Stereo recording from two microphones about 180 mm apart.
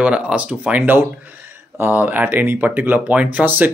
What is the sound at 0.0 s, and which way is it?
Speech, 5° right (ahead or behind).